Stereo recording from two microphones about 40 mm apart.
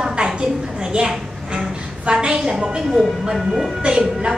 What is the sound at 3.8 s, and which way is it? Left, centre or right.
Speech, centre.